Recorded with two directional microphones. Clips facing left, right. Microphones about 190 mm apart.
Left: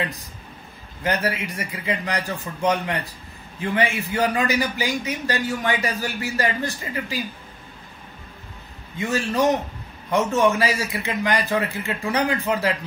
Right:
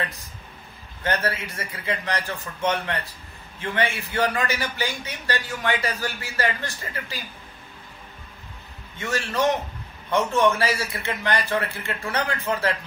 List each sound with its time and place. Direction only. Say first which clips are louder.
1.0 s a man's voice: left 2 dB; 15° left (ahead or behind)
8.9 s a man's voice: left 4 dB; 15° left (ahead or behind)